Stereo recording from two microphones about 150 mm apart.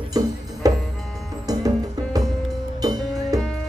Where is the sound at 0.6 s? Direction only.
25° right (ahead or behind).